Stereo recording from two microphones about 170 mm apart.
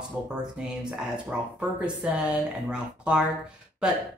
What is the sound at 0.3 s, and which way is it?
Speech, 5° right (ahead or behind).